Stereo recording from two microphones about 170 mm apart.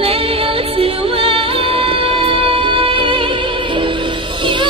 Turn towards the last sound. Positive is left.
turn(degrees=-30)  # may be behind; listen again after turning